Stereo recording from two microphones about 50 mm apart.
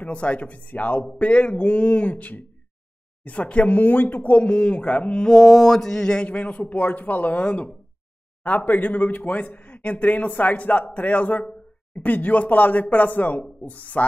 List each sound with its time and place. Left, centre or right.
0.0 s speech: left
5.3 s mantra: centre
6.2 s speech: left